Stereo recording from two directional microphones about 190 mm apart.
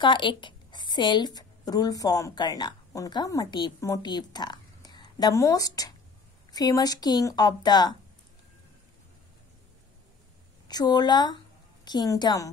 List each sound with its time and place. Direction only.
0.0 s a woman's voice: 25° left (ahead or behind)
10.7 s a woman's voice: 20° left (ahead or behind)